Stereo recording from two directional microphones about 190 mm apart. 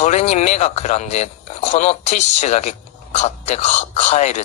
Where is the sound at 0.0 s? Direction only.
35° left (ahead or behind).